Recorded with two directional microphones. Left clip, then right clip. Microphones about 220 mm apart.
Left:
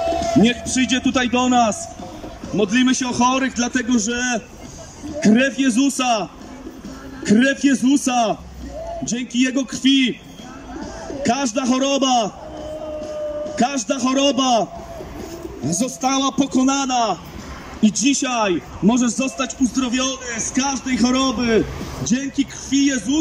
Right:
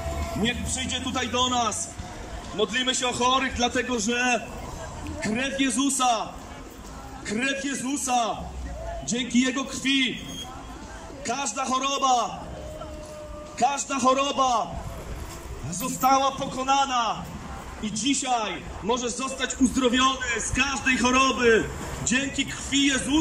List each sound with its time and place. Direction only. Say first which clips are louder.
0.1 s a man's voice: left 8 dB; 45° left (ahead or behind)
7.2 s a man's voice: left 11 dB; 35° left (ahead or behind)
11.2 s a man's voice: left 7 dB; 35° left (ahead or behind)
13.6 s a man's voice: left 2 dB; 40° left (ahead or behind)
15.8 s a man's voice: even; 50° left (ahead or behind); by 23.1 s 25° left (ahead or behind)